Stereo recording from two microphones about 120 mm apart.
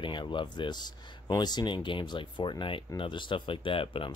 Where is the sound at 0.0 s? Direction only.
40° left (ahead or behind).